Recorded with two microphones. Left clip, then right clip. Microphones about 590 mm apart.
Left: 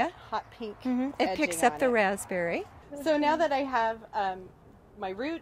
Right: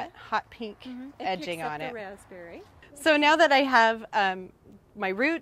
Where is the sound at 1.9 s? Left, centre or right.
Left.